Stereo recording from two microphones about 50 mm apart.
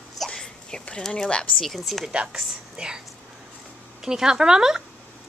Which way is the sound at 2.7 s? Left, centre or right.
Centre.